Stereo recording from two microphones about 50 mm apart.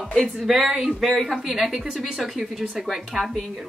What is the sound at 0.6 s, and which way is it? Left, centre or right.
Speech, centre.